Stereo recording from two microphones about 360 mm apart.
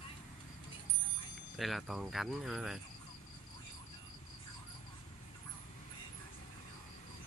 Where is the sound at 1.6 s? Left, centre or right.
Centre.